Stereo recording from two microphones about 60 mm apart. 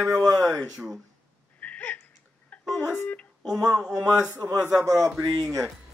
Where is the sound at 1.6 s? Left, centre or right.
Left.